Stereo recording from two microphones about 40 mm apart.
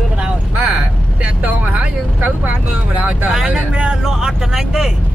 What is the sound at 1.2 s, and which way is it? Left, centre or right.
Speech, right.